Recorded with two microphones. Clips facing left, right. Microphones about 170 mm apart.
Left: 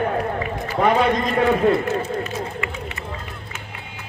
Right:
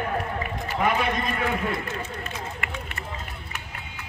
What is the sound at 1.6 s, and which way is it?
Speech, 30° left (ahead or behind).